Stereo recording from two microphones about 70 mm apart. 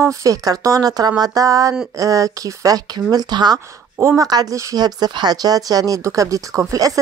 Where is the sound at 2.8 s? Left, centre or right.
Right.